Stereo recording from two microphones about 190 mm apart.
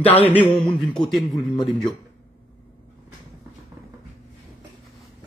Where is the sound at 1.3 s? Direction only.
25° left (ahead or behind).